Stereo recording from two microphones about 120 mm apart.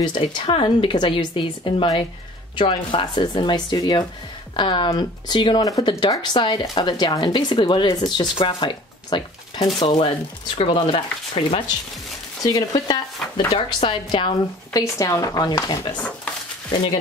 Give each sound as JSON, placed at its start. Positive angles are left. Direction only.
{"t": 0.0, "sound": "a woman's voice", "side_deg": 45}
{"t": 10.6, "sound": "a woman's voice", "side_deg": 55}
{"t": 12.4, "sound": "speech", "side_deg": 35}